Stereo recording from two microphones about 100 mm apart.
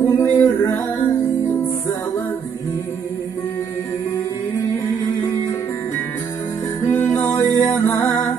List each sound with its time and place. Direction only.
0.0 s music: 20° left (ahead or behind)
6.9 s music: 20° left (ahead or behind)